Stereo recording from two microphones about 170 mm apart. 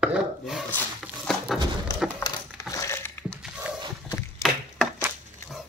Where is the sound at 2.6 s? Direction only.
20° left (ahead or behind).